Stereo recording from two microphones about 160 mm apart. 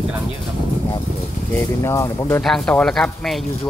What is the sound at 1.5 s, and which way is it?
Speech, 15° left (ahead or behind).